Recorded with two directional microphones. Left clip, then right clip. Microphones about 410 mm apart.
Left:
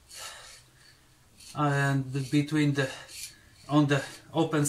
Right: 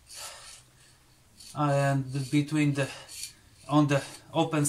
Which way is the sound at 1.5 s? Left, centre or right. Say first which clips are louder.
Right 1 dB; centre.